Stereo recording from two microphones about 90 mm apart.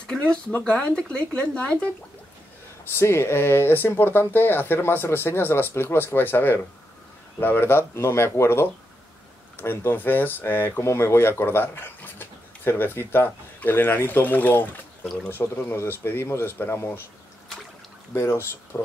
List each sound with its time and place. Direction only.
0.0 s a sound: 10° left (ahead or behind)
0.5 s speech: 15° left (ahead or behind)
2.8 s speech: 30° left (ahead or behind)
18.1 s speech: 30° left (ahead or behind)